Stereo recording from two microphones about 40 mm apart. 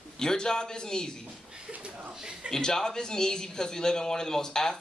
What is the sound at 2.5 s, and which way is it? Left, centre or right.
Speech, centre.